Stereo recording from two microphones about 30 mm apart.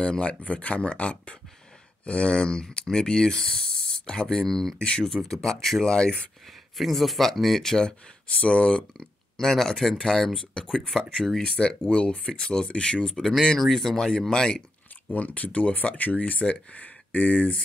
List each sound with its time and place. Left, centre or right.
0.0 s speech: left
0.5 s speech: left
4.5 s speech: centre
4.7 s speech: left
5.0 s speech: left
5.9 s speech: left
6.8 s speech: centre
8.3 s speech: left
8.7 s speech: centre
11.1 s speech: centre
11.4 s speech: left
13.1 s speech: centre
15.1 s speech: left